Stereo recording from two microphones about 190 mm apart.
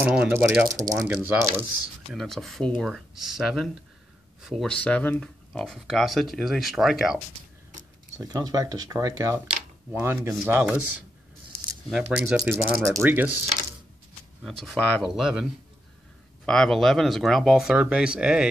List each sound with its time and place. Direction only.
0.0 s speech: 10° right (ahead or behind)
2.1 s speech: centre (ahead or behind)
8.2 s speech: 20° right (ahead or behind)
12.2 s speech: 5° right (ahead or behind)
14.4 s speech: centre (ahead or behind)
16.4 s speech: centre (ahead or behind)